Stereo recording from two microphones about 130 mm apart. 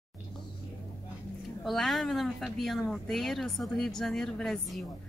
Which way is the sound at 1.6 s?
Centre (ahead or behind).